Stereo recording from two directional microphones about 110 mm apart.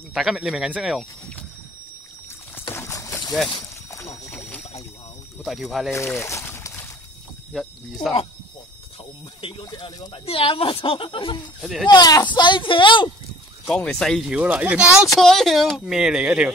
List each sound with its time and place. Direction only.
0.1 s a woman's voice: 5° right (ahead or behind)
2.7 s boat: 25° left (ahead or behind)
3.9 s rowboat: 25° left (ahead or behind)
5.4 s a woman's voice: centre (ahead or behind)
5.9 s speech: 25° left (ahead or behind)
7.5 s a woman's voice: centre (ahead or behind)
9.4 s speech: 50° left (ahead or behind)
10.2 s a woman's voice: 55° left (ahead or behind)
11.6 s a woman's voice: centre (ahead or behind)
11.9 s speech: 35° left (ahead or behind)
13.7 s a woman's voice: 10° left (ahead or behind)
14.3 s speech: 15° right (ahead or behind)
15.1 s a woman's voice: centre (ahead or behind)